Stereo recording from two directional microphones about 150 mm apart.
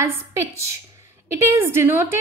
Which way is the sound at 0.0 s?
15° right (ahead or behind).